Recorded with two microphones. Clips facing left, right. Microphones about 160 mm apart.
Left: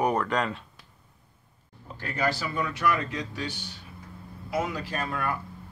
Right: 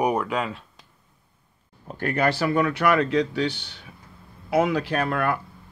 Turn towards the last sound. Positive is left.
turn(degrees=-70)  # may be behind; listen again after turning